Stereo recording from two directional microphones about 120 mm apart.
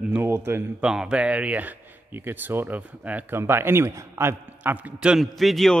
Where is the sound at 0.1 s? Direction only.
20° right (ahead or behind).